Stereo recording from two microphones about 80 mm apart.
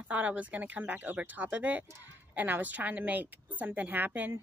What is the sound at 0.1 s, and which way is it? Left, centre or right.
A woman's voice, centre.